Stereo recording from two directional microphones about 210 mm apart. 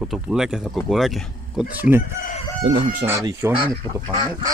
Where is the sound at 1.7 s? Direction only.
10° right (ahead or behind).